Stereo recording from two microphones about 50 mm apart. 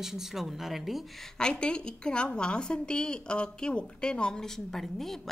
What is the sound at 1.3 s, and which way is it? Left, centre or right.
A woman's voice, centre.